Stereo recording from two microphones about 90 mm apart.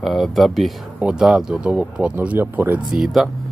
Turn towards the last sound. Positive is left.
turn(degrees=0)  # may be behind; listen again after turning